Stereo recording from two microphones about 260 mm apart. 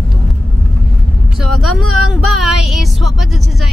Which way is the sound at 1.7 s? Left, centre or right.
Right.